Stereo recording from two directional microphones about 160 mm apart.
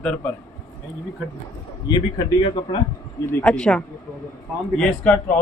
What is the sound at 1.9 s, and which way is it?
Speech, 30° left (ahead or behind).